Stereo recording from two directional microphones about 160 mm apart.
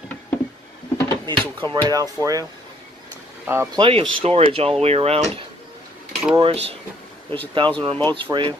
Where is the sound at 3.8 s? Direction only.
35° right (ahead or behind).